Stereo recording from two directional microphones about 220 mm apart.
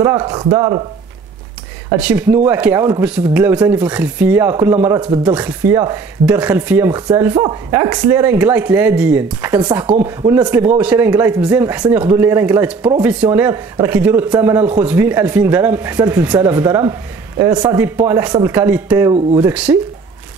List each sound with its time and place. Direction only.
0.0 s speech: 15° right (ahead or behind)
2.0 s speech: 5° right (ahead or behind)